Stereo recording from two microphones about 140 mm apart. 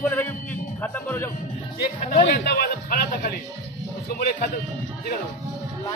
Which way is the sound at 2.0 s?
90° left.